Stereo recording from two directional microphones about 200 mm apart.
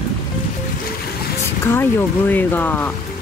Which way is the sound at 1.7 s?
10° left (ahead or behind).